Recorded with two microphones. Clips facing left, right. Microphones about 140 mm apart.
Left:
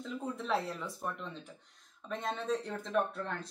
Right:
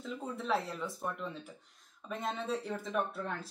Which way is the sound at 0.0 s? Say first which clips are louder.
Left 1 dB; centre (ahead or behind).